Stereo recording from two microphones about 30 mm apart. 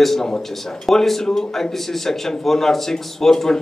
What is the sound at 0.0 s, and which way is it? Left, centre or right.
A man's voice, centre.